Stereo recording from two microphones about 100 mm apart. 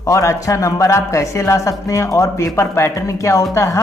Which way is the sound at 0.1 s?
30° left (ahead or behind).